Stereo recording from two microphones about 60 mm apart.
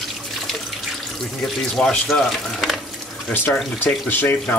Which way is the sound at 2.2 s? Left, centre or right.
Centre.